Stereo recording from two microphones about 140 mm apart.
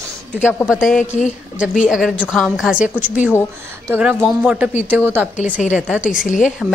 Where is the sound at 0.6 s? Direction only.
5° right (ahead or behind).